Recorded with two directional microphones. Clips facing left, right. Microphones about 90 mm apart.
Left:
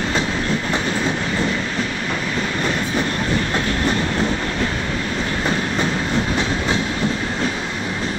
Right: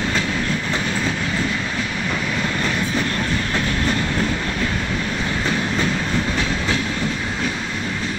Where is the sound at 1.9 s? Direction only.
5° left (ahead or behind).